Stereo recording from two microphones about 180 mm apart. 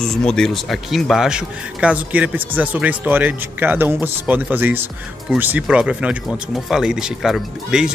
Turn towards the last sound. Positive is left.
turn(degrees=-5)  # may be behind; listen again after turning